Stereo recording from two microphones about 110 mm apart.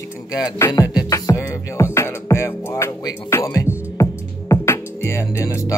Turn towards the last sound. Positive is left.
turn(degrees=25)  # may be behind; listen again after turning